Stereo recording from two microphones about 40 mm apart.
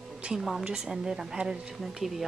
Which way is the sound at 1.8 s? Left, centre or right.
Centre.